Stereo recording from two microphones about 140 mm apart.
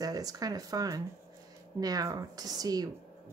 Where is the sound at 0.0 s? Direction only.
25° right (ahead or behind).